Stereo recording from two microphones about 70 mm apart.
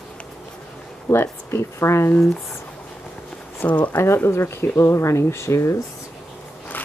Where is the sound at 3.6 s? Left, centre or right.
Left.